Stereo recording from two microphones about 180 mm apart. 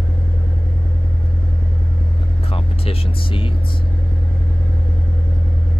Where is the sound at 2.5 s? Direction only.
30° left (ahead or behind).